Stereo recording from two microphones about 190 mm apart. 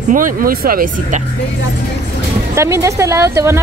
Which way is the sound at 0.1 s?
45° right (ahead or behind).